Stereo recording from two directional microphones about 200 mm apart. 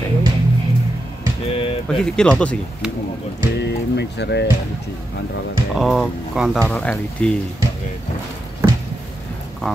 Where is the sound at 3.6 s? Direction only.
60° left (ahead or behind).